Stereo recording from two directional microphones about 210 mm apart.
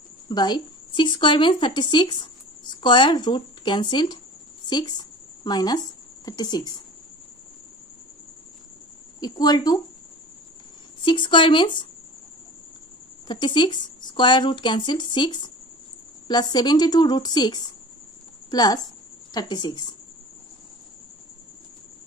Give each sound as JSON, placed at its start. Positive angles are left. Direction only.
{"t": 0.3, "sound": "a woman's voice", "side_deg": 20}
{"t": 9.2, "sound": "speech", "side_deg": 20}
{"t": 11.0, "sound": "speech", "side_deg": 20}
{"t": 13.3, "sound": "speech", "side_deg": 20}